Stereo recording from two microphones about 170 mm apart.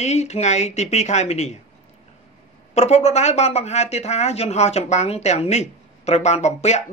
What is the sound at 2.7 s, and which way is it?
Speech, 40° left (ahead or behind).